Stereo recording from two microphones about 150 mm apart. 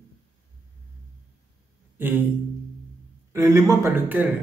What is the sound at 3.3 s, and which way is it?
Speech, 20° right (ahead or behind).